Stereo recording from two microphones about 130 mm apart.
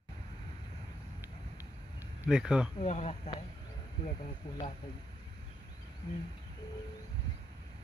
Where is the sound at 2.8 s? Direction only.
60° left (ahead or behind).